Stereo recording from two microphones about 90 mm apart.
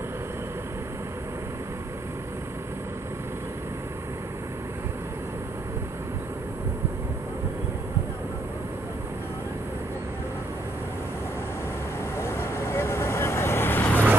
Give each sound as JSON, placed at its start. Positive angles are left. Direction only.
{"t": 12.2, "sound": "vehicle", "side_deg": 30}